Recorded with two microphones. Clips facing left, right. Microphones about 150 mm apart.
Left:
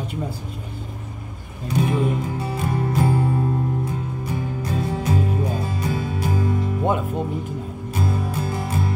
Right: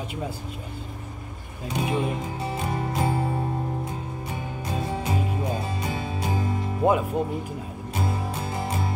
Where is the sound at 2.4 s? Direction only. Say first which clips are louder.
Left 2 dB; 25° right (ahead or behind).